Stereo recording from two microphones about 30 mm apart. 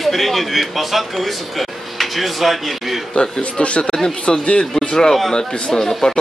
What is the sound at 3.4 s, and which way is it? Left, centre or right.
Speech, left.